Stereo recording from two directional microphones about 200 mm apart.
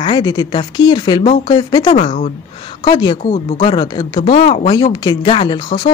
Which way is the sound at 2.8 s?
20° left (ahead or behind).